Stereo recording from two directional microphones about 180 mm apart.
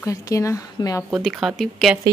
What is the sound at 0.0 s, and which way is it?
Speech, 15° left (ahead or behind).